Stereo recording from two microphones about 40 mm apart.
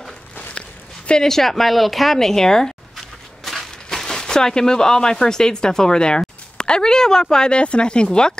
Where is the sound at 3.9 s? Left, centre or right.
Centre.